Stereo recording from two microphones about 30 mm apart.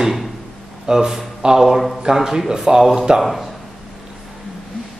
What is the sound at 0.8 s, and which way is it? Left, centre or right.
A man's voice, centre.